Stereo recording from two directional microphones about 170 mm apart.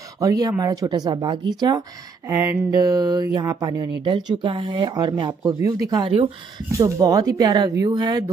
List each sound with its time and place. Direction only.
0.2 s speech: 20° right (ahead or behind)
6.7 s speech: 20° right (ahead or behind)